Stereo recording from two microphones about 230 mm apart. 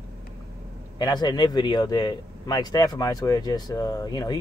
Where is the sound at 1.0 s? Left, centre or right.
Centre.